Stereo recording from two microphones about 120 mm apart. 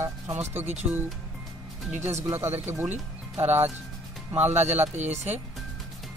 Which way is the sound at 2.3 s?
20° right (ahead or behind).